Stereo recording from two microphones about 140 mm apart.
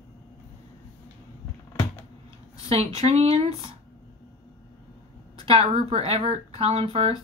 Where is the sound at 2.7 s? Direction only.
50° right (ahead or behind).